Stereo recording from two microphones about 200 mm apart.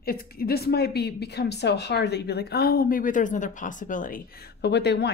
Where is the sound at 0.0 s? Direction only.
50° left (ahead or behind).